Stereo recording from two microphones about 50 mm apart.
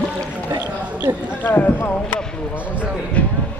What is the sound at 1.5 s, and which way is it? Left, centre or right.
Speech, left.